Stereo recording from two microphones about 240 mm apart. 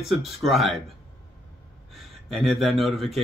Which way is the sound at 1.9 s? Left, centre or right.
Centre.